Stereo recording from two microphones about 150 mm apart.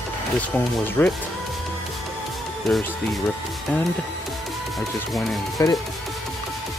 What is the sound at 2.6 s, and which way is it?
Speech, centre (ahead or behind).